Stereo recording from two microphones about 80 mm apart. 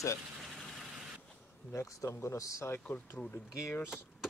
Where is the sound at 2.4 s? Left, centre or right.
Left.